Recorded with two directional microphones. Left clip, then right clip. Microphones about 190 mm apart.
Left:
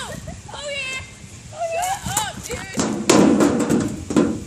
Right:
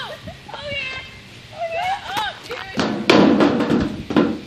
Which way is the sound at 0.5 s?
65° left (ahead or behind).